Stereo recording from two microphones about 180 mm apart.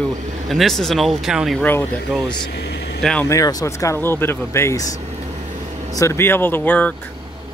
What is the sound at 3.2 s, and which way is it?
Speech, 15° left (ahead or behind).